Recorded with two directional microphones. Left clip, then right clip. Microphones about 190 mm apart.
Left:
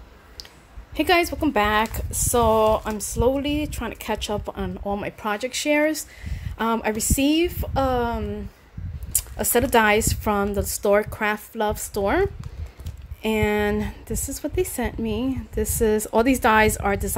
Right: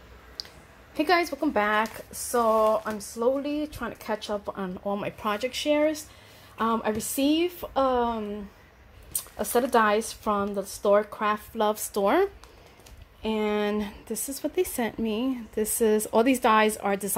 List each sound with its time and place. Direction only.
0.9 s a woman's voice: 20° left (ahead or behind)
9.1 s speech: 25° left (ahead or behind); by 12.3 s 5° left (ahead or behind)
13.2 s a woman's voice: 20° left (ahead or behind)